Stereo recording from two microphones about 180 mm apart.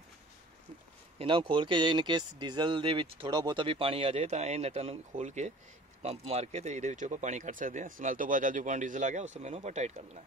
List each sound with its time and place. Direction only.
1.1 s speech: 30° right (ahead or behind)